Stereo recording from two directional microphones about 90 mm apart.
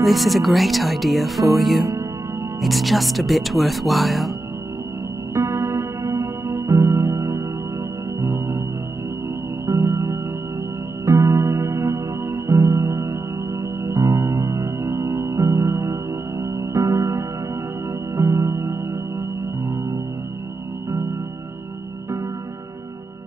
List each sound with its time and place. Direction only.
0.0 s speech: centre (ahead or behind)
5.3 s music: 30° right (ahead or behind)
8.2 s organ: 30° right (ahead or behind)
9.7 s music: 30° right (ahead or behind)